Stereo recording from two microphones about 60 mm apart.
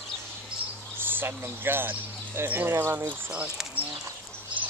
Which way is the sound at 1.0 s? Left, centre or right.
Right.